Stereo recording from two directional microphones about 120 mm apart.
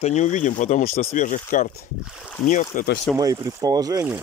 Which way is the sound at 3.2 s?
30° right (ahead or behind).